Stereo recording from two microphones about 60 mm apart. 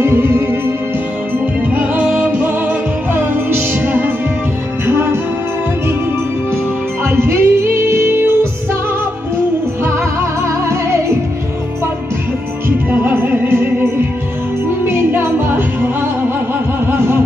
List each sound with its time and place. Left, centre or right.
0.0 s music: right
1.7 s music: right
4.8 s music: right
7.1 s music: right
12.6 s music: right
14.9 s music: right
16.8 s a sound: right